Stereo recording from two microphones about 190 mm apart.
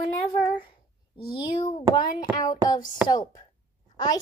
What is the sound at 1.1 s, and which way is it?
A woman's voice, 25° left (ahead or behind).